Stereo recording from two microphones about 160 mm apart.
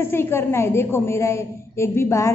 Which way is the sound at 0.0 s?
15° left (ahead or behind).